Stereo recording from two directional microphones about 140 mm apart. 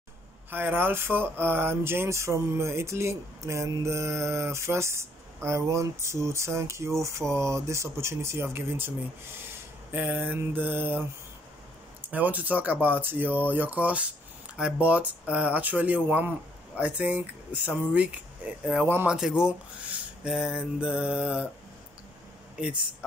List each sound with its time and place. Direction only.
0.5 s speech: 15° right (ahead or behind)
9.9 s speech: 10° right (ahead or behind)
12.1 s speech: 10° right (ahead or behind)
19.1 s speech: 5° right (ahead or behind)
22.6 s speech: 10° right (ahead or behind)